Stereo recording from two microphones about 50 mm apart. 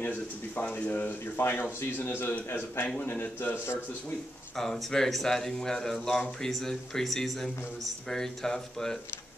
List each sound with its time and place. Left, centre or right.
0.0 s a man's voice: left
4.6 s speech: centre